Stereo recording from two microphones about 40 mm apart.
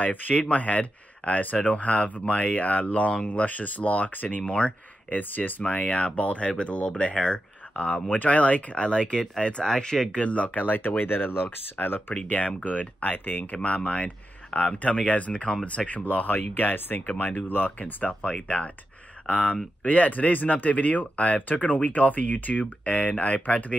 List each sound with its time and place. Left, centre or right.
0.0 s speech: left
4.5 s speech: left
5.1 s speech: left
5.6 s speech: left
7.7 s speech: left
8.8 s speech: left
10.2 s speech: left
11.7 s speech: left
12.3 s speech: left
13.4 s speech: left